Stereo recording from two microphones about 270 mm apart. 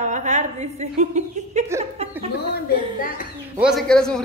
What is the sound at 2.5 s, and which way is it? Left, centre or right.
Speech, left.